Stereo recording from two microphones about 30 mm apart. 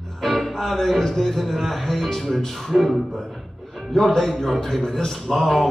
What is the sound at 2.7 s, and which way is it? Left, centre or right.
Speech, centre.